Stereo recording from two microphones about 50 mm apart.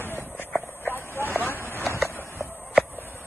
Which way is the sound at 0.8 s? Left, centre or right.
Left.